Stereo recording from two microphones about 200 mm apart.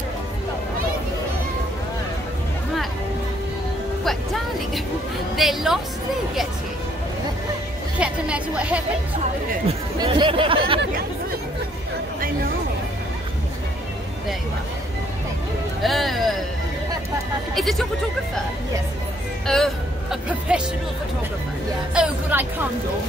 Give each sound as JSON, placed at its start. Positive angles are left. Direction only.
{"t": 4.0, "sound": "vehicle", "side_deg": 0}
{"t": 5.3, "sound": "a woman's voice", "side_deg": 0}
{"t": 8.0, "sound": "a woman's voice", "side_deg": -5}
{"t": 9.9, "sound": "speech", "side_deg": -25}
{"t": 15.8, "sound": "music", "side_deg": 0}
{"t": 17.6, "sound": "a woman's voice", "side_deg": 0}
{"t": 19.4, "sound": "speech", "side_deg": 0}
{"t": 21.9, "sound": "speech", "side_deg": -5}